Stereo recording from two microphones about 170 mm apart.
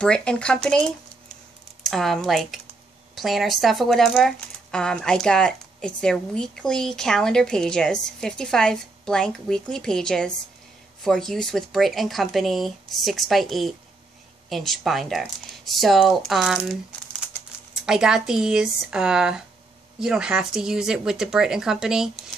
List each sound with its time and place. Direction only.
0.0 s speech: 5° left (ahead or behind)
17.7 s speech: 5° right (ahead or behind)